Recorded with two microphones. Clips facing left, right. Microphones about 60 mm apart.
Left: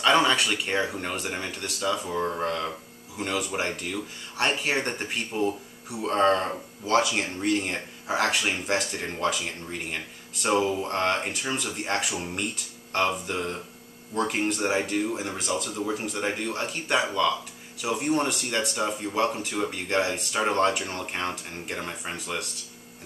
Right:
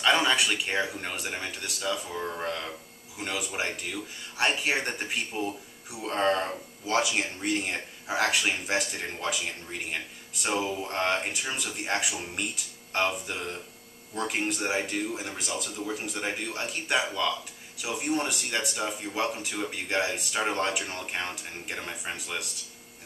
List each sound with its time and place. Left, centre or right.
0.0 s speech: centre
10.5 s a sound: centre
10.8 s speech: centre